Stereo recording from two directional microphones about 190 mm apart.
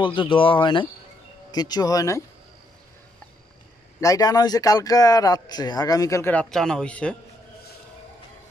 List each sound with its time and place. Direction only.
0.0 s speech: 25° left (ahead or behind)
4.0 s speech: 20° left (ahead or behind)